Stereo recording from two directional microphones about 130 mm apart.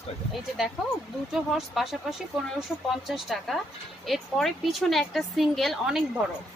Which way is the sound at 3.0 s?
Centre (ahead or behind).